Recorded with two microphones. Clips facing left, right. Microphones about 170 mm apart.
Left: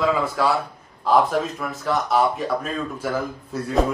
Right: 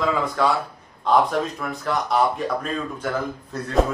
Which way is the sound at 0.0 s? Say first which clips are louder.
Left 1 dB; 5° left (ahead or behind).